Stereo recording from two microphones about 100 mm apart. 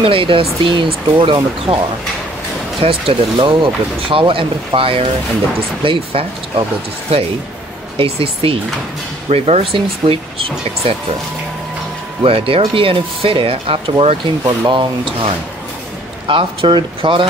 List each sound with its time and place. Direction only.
0.0 s speech: 60° right (ahead or behind)
2.8 s speech: 75° right (ahead or behind)
3.3 s speech: 55° right (ahead or behind)
8.0 s speech: 65° right (ahead or behind)
9.3 s speech: 85° right
12.2 s speech: 70° right (ahead or behind)
14.4 s speech: 45° right (ahead or behind)
16.3 s speech: 60° right (ahead or behind)